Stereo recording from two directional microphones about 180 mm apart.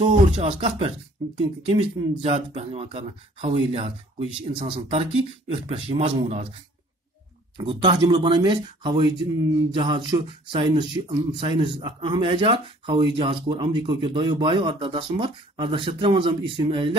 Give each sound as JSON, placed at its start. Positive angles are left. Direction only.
{"t": 0.0, "sound": "speech", "side_deg": -30}
{"t": 7.5, "sound": "speech", "side_deg": -30}